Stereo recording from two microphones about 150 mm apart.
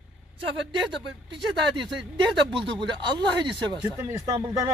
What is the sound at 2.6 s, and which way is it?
Speech, 30° right (ahead or behind).